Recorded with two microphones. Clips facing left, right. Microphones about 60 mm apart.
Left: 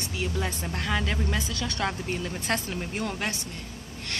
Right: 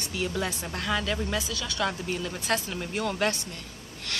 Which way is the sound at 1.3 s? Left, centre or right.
Left.